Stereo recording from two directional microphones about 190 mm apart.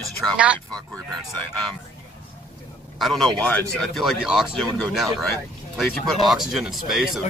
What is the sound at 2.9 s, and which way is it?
A woman's voice, centre (ahead or behind).